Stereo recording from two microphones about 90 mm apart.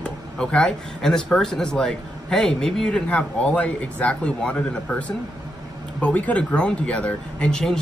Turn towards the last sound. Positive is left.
turn(degrees=5)  # may be behind; listen again after turning